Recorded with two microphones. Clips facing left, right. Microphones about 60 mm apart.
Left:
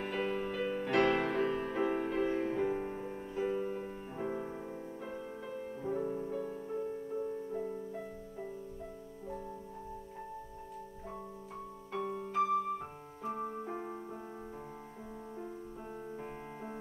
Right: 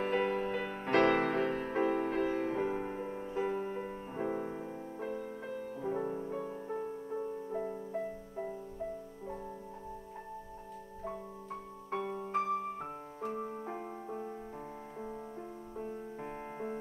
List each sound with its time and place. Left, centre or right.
0.0 s music: right
5.9 s music: right
7.9 s music: right
12.1 s music: right